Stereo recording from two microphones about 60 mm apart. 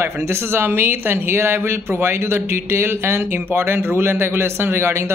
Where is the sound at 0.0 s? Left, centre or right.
Right.